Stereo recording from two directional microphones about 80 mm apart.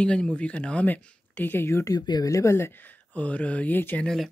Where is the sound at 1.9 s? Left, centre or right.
Left.